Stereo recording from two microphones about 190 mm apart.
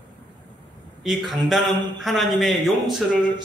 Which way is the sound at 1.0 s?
Centre (ahead or behind).